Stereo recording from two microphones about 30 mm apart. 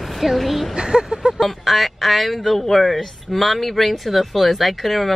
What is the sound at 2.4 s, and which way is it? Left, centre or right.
Music, centre.